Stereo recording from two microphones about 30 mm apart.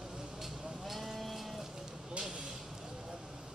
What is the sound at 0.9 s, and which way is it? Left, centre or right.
Sheep, centre.